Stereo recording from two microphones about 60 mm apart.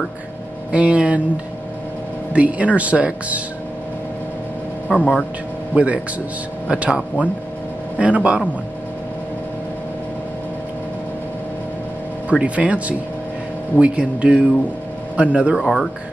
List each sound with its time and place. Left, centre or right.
0.7 s speech: right
4.9 s speech: left
5.7 s speech: right
8.0 s speech: right
12.3 s speech: right
15.5 s speech: centre